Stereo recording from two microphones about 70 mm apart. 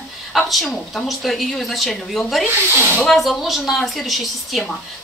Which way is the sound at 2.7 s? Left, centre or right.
Right.